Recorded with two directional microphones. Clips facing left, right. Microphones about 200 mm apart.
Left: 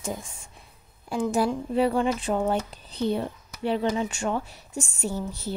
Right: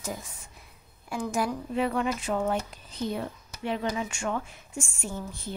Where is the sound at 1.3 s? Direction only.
30° left (ahead or behind).